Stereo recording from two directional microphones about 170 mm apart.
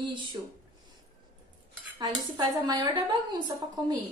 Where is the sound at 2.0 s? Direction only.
25° right (ahead or behind).